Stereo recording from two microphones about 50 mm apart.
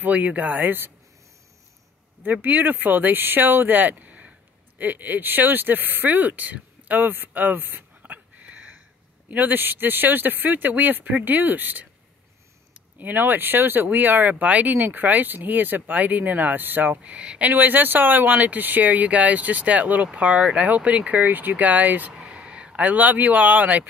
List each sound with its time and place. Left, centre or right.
0.0 s speech: right
2.2 s speech: right
13.0 s speech: right
17.0 s speech: right
17.5 s speech: right
22.1 s speech: centre